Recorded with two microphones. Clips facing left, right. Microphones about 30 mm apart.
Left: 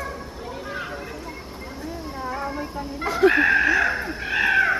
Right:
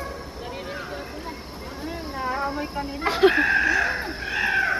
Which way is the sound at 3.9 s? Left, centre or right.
Right.